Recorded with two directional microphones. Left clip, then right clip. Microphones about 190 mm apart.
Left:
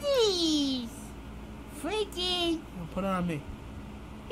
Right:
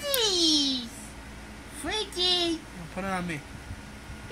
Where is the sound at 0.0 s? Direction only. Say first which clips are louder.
Right 1 dB; 15° left (ahead or behind).